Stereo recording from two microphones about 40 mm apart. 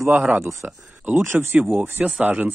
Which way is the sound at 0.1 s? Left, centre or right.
Right.